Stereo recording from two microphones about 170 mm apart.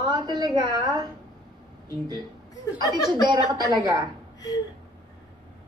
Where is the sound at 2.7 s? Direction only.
25° right (ahead or behind).